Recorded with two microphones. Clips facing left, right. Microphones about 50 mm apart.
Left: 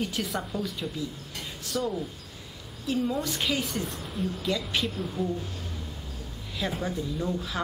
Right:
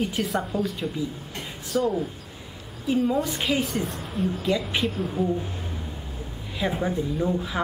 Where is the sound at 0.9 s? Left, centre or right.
Right.